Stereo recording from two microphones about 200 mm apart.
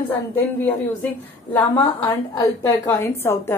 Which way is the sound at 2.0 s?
20° left (ahead or behind).